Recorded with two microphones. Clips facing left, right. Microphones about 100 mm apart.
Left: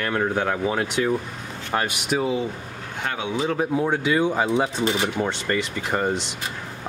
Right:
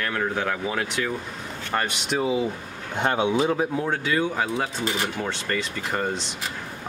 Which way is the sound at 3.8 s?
15° left (ahead or behind).